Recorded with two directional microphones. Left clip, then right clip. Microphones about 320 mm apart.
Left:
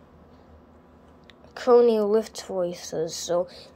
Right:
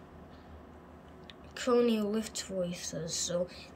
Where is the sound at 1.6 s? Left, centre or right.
Centre.